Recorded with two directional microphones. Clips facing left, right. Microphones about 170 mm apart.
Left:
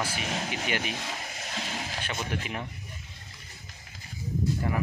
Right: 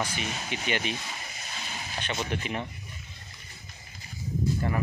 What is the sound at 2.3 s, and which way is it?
Speech, 5° left (ahead or behind).